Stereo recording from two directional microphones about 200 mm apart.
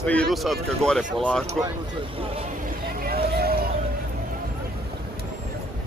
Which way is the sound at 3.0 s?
50° right (ahead or behind).